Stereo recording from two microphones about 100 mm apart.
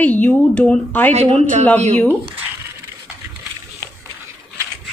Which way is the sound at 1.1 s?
90° right.